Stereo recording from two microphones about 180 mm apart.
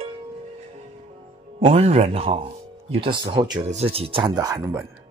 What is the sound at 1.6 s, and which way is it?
Speech, 35° right (ahead or behind).